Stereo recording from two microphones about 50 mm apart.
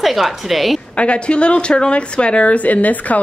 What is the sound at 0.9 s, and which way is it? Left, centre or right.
A woman's voice, left.